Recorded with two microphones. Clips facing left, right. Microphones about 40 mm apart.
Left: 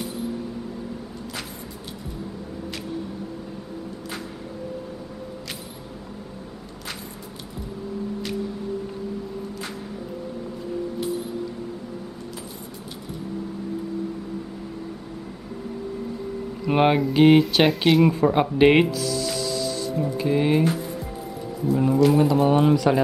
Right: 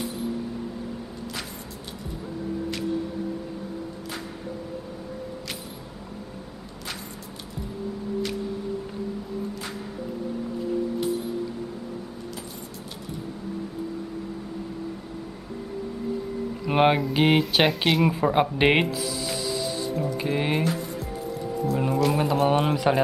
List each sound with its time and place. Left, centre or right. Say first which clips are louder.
16.6 s speech: left 1 dB; centre
18.9 s music: left 3 dB; centre
20.2 s speech: left 7 dB; centre
21.7 s speech: left 6 dB; centre